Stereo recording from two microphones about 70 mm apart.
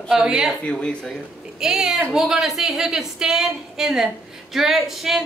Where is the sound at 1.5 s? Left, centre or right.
Centre.